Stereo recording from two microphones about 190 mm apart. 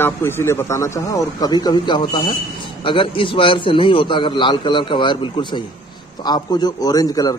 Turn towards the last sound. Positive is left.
turn(degrees=20)  # may be behind; listen again after turning